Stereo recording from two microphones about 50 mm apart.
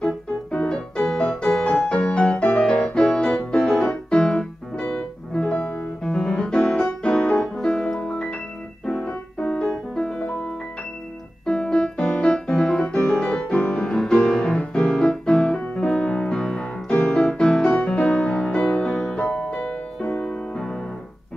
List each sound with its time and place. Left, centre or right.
0.0 s music: centre
3.5 s keyboard: centre
4.1 s music: left
5.6 s music: left
6.0 s music: centre
7.0 s piano: centre
10.2 s music: left
11.4 s keyboard: centre
12.4 s piano: centre
13.2 s music: centre